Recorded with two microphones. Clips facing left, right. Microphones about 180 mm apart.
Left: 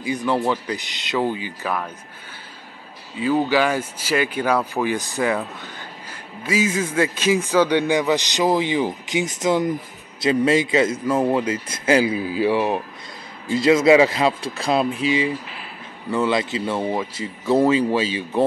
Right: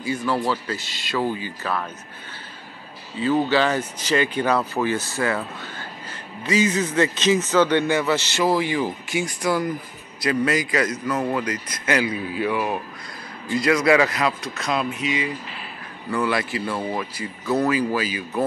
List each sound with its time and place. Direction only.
0.0 s a man's voice: 15° left (ahead or behind)
3.2 s a man's voice: 10° left (ahead or behind); by 18.4 s 25° left (ahead or behind)